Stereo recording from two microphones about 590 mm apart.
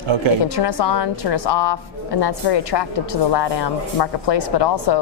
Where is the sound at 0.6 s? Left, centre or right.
Left.